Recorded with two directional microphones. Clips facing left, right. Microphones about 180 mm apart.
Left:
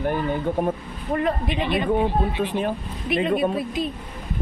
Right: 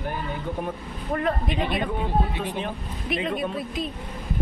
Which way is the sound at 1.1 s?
5° left (ahead or behind).